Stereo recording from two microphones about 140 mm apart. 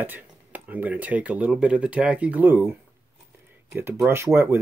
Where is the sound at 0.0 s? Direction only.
10° right (ahead or behind).